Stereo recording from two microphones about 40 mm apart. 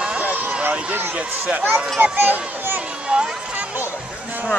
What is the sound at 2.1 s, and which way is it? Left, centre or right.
Speech, right.